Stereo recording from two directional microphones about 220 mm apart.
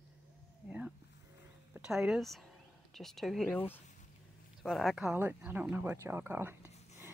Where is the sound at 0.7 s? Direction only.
5° right (ahead or behind).